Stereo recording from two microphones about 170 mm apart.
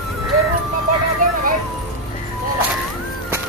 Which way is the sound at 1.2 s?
55° right (ahead or behind).